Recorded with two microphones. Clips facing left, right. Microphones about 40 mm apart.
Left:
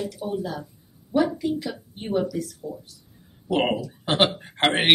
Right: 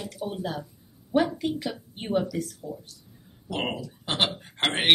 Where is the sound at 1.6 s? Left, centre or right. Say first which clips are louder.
Left 1 dB; right.